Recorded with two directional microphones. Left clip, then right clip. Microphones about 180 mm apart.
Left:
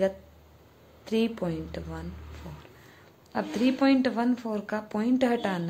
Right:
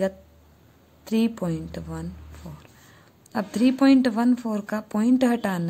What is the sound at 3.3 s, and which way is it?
A woman's voice, 50° right (ahead or behind).